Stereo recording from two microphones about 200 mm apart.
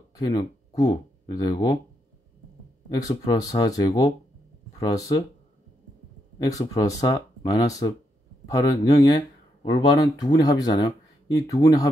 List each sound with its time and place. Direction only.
0.1 s speech: 20° left (ahead or behind)
3.0 s speech: 15° left (ahead or behind)
6.5 s speech: 15° left (ahead or behind)